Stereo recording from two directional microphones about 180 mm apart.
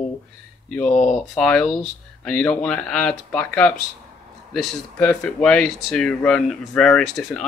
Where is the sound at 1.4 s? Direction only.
5° left (ahead or behind).